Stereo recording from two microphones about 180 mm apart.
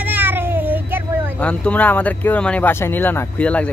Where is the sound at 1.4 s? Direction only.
5° left (ahead or behind).